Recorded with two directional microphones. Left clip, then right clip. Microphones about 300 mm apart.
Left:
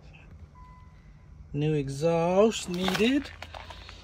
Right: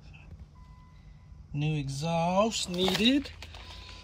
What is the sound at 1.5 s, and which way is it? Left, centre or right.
Speech, centre.